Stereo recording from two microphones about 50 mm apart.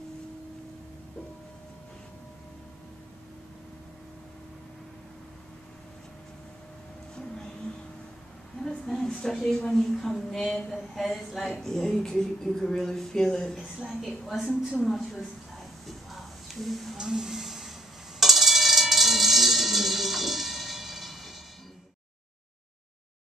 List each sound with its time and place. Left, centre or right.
7.2 s music: centre
8.6 s a sound: centre
9.2 s a woman's voice: centre
13.6 s a woman's voice: centre
15.9 s music: centre
16.9 s a sound: centre
18.2 s music: centre